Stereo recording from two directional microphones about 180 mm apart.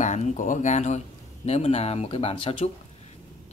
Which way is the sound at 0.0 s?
40° left (ahead or behind).